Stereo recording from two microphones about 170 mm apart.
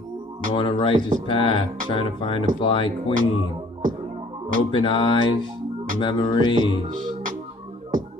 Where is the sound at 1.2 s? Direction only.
35° left (ahead or behind).